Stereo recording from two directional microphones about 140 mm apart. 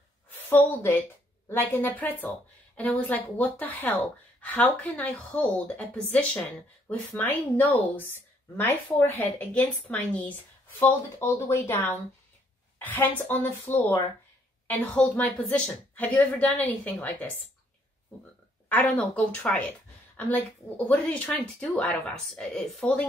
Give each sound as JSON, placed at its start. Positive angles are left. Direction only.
{"t": 0.3, "sound": "a woman's voice", "side_deg": 15}
{"t": 6.9, "sound": "speech", "side_deg": 15}
{"t": 18.9, "sound": "speech", "side_deg": 5}